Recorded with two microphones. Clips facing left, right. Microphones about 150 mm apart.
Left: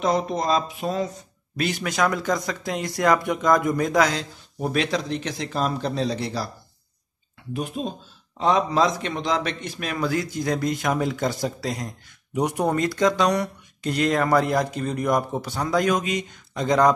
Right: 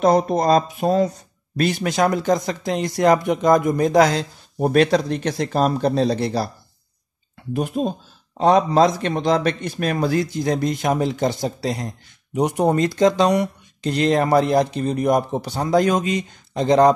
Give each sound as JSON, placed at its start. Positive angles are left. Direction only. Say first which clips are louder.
{"t": 0.0, "sound": "speech", "louder": "right 6 dB", "side_deg": -45}
{"t": 1.6, "sound": "speech", "louder": "right 4 dB", "side_deg": -30}
{"t": 7.5, "sound": "speech", "louder": "right 6 dB", "side_deg": -45}